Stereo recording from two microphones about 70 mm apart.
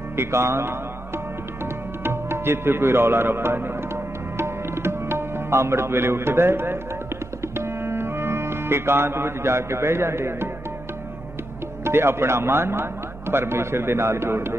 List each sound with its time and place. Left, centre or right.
0.1 s music: right
11.8 s a man's voice: right